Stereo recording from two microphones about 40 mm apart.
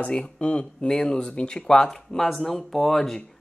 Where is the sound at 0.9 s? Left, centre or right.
Centre.